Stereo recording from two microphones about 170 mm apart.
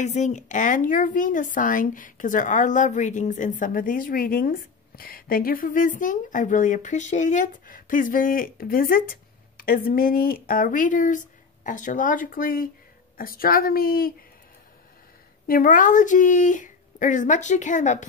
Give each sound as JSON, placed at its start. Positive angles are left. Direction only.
{"t": 0.0, "sound": "a woman's voice", "side_deg": 45}
{"t": 15.4, "sound": "speech", "side_deg": 55}